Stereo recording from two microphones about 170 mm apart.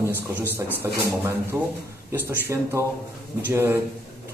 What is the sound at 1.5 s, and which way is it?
Speech, 15° right (ahead or behind).